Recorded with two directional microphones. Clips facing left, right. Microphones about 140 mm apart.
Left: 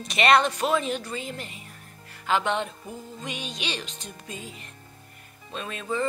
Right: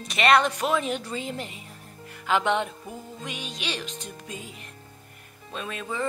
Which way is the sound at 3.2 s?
5° right (ahead or behind).